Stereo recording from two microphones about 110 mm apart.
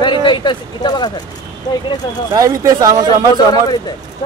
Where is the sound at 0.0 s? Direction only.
45° left (ahead or behind).